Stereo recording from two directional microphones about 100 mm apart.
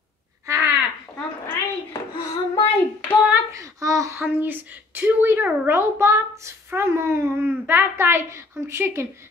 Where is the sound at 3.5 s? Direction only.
35° right (ahead or behind).